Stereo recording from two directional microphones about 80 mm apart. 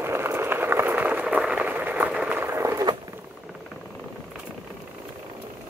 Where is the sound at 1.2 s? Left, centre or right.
Centre.